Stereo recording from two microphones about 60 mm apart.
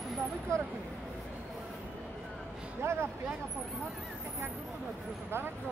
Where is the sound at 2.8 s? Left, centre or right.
Right.